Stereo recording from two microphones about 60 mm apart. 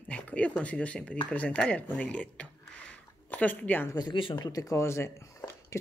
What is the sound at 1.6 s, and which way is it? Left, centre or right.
Speech, centre.